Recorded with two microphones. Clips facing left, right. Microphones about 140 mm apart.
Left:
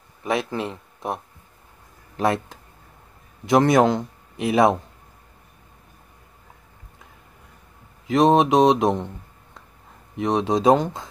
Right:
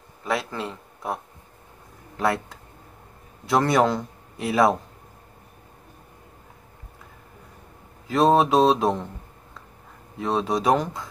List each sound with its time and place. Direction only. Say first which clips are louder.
0.2 s a man's voice: left 3 dB; 20° left (ahead or behind)
8.1 s a man's voice: left 2 dB; 20° left (ahead or behind)
10.1 s a man's voice: left 3 dB; 20° left (ahead or behind)